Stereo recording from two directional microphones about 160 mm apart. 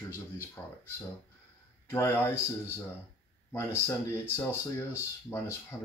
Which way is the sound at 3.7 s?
15° left (ahead or behind).